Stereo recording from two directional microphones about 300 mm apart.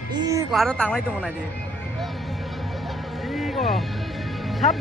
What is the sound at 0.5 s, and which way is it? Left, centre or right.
Speech, centre.